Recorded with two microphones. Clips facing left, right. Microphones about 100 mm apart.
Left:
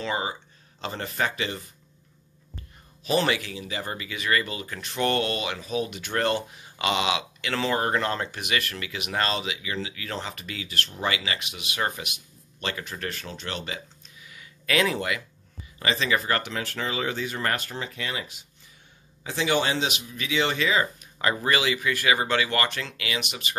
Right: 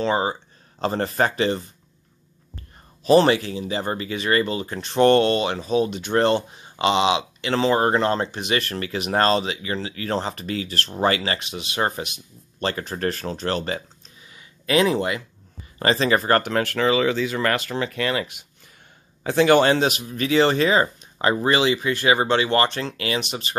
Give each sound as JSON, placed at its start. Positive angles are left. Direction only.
{"t": 0.0, "sound": "speech", "side_deg": -35}
{"t": 3.0, "sound": "speech", "side_deg": -35}
{"t": 14.3, "sound": "a sound", "side_deg": -25}
{"t": 15.8, "sound": "speech", "side_deg": -40}
{"t": 19.2, "sound": "speech", "side_deg": -55}